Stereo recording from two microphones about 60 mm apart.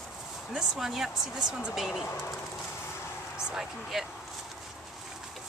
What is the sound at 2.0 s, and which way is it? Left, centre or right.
Speech, left.